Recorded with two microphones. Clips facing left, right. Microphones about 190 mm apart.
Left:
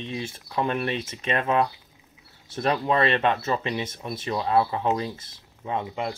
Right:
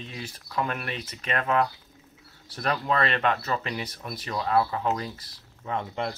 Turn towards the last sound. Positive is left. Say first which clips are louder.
# left 2 dB
turn(degrees=15)  # may be behind; listen again after turning